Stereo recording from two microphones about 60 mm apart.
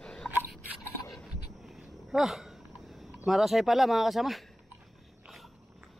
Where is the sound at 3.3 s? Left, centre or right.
Centre.